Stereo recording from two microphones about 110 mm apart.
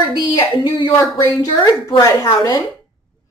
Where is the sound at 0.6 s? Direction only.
55° left (ahead or behind).